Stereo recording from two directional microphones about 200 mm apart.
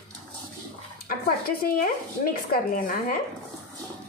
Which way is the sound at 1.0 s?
45° left (ahead or behind).